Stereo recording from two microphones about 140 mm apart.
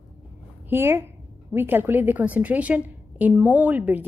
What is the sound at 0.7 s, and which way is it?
A woman's voice, 15° right (ahead or behind).